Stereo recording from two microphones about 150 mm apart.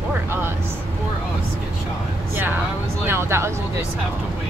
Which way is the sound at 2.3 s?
15° right (ahead or behind).